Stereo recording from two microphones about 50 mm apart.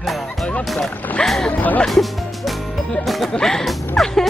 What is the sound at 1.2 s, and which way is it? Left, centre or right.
Speech, centre.